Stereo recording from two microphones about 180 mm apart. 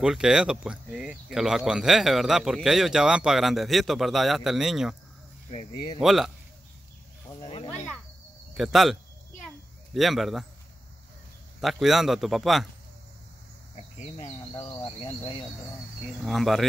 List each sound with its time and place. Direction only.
0.0 s speech: 5° right (ahead or behind)
5.9 s speech: centre (ahead or behind)
7.2 s wild animals: 25° left (ahead or behind)
8.5 s speech: centre (ahead or behind)
9.9 s speech: centre (ahead or behind)
11.6 s speech: centre (ahead or behind)
13.7 s speech: 35° left (ahead or behind)
14.5 s insect: 25° left (ahead or behind)
16.2 s speech: centre (ahead or behind)